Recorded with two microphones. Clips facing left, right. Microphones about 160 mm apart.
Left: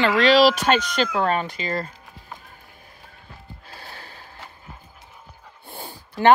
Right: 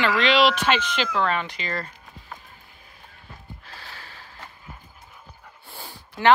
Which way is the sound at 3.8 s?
50° left (ahead or behind).